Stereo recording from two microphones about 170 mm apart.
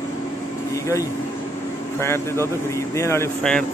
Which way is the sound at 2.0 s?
15° left (ahead or behind).